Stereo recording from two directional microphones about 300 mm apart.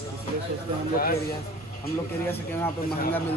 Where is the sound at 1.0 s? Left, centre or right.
Left.